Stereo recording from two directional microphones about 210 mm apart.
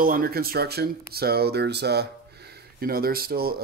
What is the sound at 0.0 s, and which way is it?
Speech, 45° right (ahead or behind).